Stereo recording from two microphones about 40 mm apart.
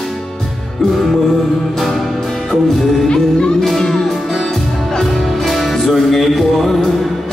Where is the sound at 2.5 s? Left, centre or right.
Centre.